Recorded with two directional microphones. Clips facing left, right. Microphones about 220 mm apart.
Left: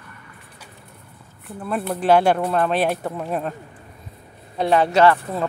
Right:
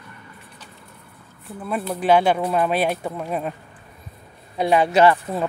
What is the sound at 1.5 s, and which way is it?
Speech, 5° right (ahead or behind).